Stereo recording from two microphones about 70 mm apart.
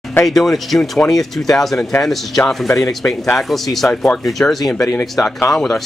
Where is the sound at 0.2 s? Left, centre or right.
Centre.